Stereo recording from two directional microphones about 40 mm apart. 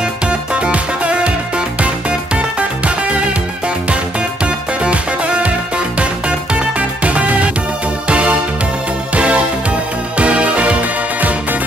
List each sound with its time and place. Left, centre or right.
0.0 s music: right
1.8 s music: right
4.8 s music: right